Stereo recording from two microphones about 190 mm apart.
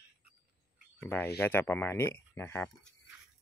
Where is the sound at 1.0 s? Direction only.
10° left (ahead or behind).